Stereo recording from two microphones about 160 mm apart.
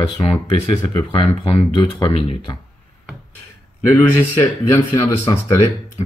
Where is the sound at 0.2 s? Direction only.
35° left (ahead or behind).